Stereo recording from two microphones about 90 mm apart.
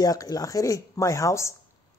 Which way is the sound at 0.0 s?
45° left (ahead or behind).